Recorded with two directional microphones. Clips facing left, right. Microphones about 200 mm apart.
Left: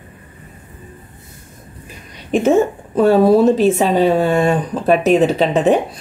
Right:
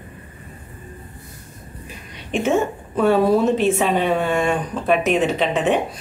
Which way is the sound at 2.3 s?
40° left (ahead or behind).